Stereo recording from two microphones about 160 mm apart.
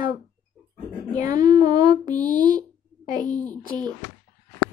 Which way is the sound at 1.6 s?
30° right (ahead or behind).